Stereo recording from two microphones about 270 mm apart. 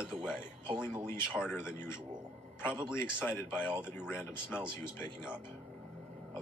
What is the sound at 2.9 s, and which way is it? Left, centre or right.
Speech, centre.